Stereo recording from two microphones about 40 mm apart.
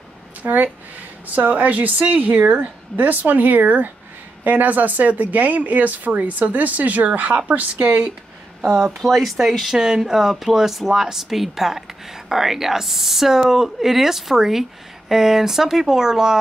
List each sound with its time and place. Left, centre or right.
0.4 s speech: right
9.0 s speech: centre